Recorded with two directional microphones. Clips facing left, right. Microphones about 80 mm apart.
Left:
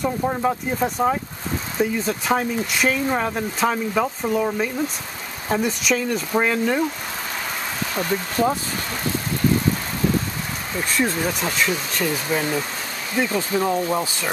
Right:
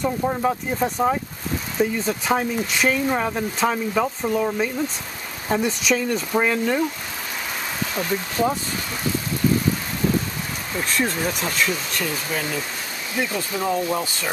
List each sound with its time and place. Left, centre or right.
0.0 s speech: centre
7.9 s speech: centre
10.8 s speech: centre
13.6 s speech: centre